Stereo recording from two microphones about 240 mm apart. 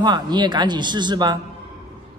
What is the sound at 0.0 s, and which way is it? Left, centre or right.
A man's voice, centre.